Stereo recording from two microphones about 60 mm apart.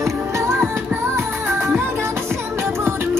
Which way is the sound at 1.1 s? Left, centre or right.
Right.